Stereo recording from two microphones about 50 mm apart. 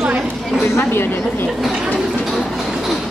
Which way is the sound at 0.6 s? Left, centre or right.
Left.